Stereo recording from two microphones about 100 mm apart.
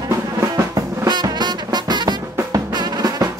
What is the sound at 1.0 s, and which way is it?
Music, 45° right (ahead or behind).